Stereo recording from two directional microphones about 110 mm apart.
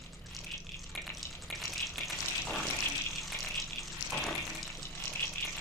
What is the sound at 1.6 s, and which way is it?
Frying, centre (ahead or behind).